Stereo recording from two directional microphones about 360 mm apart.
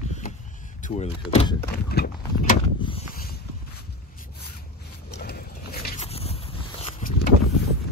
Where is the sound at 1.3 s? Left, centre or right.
Centre.